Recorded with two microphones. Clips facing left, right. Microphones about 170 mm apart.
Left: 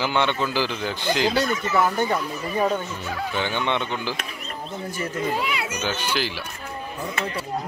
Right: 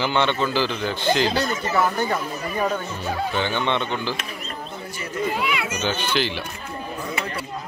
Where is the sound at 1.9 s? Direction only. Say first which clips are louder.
Left 1 dB; 25° left (ahead or behind).